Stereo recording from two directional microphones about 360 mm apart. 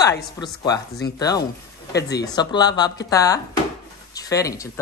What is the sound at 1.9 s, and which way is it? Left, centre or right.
Speech, left.